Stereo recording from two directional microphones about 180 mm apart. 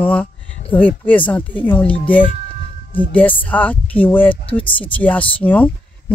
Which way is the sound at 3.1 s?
10° left (ahead or behind).